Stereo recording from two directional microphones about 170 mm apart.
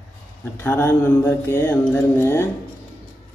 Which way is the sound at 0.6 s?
15° left (ahead or behind).